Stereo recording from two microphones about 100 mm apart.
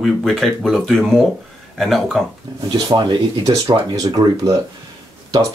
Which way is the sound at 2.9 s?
45° right (ahead or behind).